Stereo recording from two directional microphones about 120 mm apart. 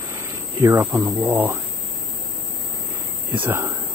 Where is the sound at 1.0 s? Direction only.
20° right (ahead or behind).